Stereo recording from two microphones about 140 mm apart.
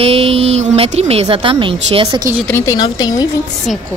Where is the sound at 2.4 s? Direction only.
20° left (ahead or behind).